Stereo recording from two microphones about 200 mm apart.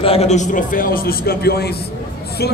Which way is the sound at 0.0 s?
30° left (ahead or behind).